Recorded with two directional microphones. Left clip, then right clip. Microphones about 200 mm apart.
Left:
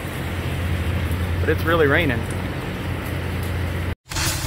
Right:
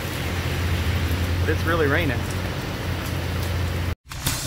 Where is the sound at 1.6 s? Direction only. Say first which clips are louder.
Left 4 dB; 25° left (ahead or behind).